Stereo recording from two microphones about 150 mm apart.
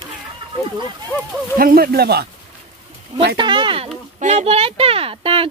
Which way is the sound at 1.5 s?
75° right (ahead or behind).